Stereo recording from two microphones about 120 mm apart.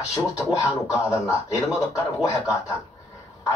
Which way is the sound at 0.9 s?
25° left (ahead or behind).